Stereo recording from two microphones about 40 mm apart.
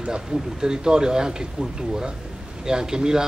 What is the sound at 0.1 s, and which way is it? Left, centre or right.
A man's voice, centre.